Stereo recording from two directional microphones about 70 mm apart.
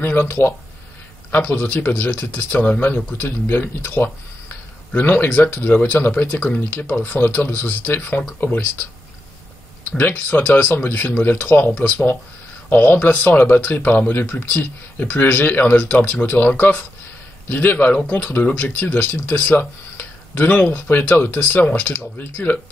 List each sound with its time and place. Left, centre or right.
0.0 s speech: left
9.9 s speech: left